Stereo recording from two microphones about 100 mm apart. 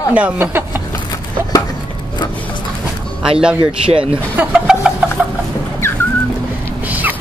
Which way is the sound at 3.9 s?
70° right (ahead or behind).